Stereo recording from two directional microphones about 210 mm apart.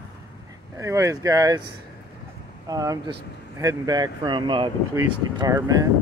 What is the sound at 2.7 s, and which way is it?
Speech, 15° right (ahead or behind).